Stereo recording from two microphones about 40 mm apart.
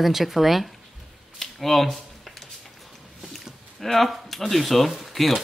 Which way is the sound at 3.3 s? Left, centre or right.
Centre.